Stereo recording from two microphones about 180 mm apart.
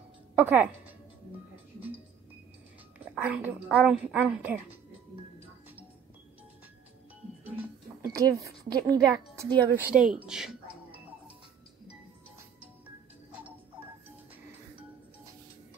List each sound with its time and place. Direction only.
0.4 s speech: 10° right (ahead or behind)
3.3 s a woman's voice: 5° right (ahead or behind)
8.0 s a woman's voice: 15° right (ahead or behind)
9.8 s speech: 5° right (ahead or behind)